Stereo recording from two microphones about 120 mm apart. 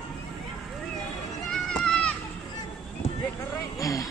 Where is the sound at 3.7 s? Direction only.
30° left (ahead or behind).